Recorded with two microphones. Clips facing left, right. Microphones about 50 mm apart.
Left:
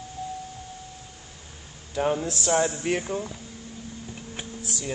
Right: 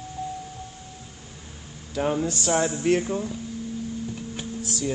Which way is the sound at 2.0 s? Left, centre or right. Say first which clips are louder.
Right 1 dB; centre.